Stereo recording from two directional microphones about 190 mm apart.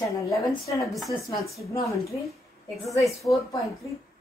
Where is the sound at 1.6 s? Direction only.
15° left (ahead or behind).